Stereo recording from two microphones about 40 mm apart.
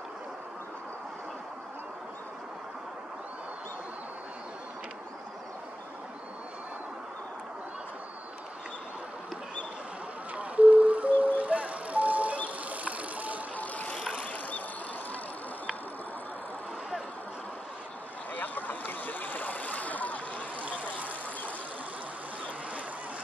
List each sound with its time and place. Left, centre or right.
10.3 s music: right
12.6 s vehicle: right
13.6 s vehicle: left
18.3 s a sound: left